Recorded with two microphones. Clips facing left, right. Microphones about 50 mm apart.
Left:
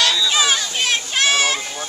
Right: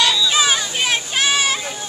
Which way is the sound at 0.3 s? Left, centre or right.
Centre.